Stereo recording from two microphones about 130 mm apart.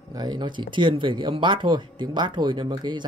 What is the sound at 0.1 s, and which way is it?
Speech, 30° right (ahead or behind).